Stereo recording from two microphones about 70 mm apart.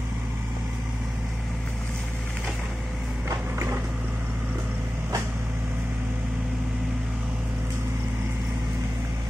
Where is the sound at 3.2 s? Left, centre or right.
Right.